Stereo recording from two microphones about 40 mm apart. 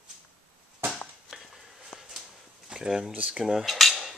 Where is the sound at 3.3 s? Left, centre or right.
Centre.